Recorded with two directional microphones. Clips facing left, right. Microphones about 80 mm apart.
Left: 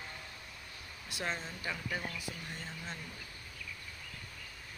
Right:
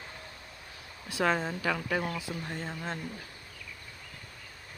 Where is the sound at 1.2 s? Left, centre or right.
Right.